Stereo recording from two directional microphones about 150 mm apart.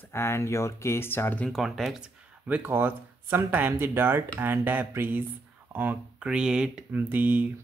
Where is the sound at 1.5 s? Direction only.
Centre (ahead or behind).